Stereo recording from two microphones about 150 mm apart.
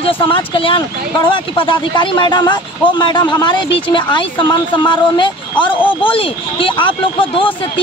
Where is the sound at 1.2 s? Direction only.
35° left (ahead or behind).